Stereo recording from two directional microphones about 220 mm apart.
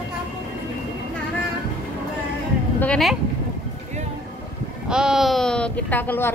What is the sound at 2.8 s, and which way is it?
Speech, centre (ahead or behind).